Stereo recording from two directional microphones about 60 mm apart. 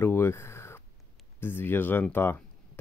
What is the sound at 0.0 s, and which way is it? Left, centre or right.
Speech, left.